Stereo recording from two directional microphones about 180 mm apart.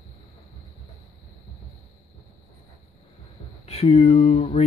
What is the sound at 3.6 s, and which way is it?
Speech, 35° left (ahead or behind).